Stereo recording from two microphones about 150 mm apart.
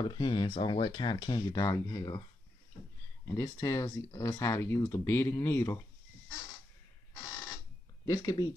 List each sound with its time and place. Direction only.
0.0 s speech: 30° left (ahead or behind)
3.3 s speech: 15° left (ahead or behind)
8.0 s speech: 25° left (ahead or behind)